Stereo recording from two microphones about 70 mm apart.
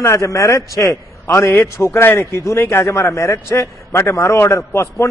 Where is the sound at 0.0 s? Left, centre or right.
Left.